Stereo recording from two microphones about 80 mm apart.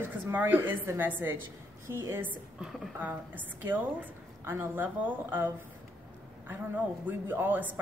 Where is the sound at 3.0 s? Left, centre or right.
Right.